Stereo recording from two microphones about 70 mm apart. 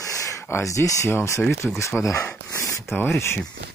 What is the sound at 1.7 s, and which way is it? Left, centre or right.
Speech, left.